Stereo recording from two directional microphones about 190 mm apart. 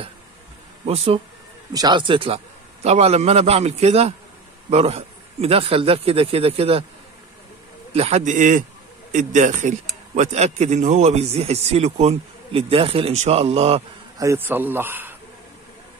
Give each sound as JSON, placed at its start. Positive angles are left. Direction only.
{"t": 0.8, "sound": "a man's voice", "side_deg": -30}
{"t": 7.9, "sound": "a man's voice", "side_deg": -35}
{"t": 14.1, "sound": "a man's voice", "side_deg": -15}